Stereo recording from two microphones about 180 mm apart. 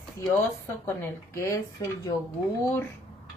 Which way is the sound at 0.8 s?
15° left (ahead or behind).